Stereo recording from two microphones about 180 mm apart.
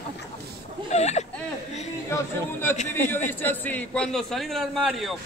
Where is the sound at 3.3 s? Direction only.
10° left (ahead or behind).